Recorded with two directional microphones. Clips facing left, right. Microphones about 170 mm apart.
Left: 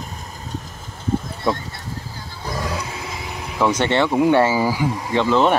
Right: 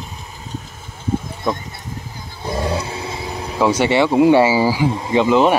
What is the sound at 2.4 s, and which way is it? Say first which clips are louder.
Vehicle: right 5 dB; 25° right (ahead or behind).